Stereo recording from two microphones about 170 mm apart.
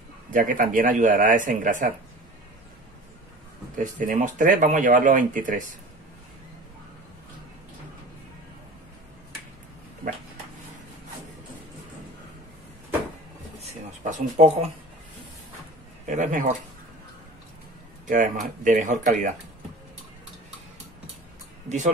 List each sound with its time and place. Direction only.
0.3 s speech: 55° right (ahead or behind)
3.7 s speech: 50° right (ahead or behind)
13.6 s a sound: 45° right (ahead or behind)
16.1 s speech: 50° right (ahead or behind)
18.1 s speech: 50° right (ahead or behind)